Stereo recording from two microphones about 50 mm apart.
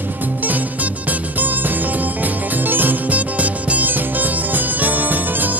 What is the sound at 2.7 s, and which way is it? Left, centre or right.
Music, right.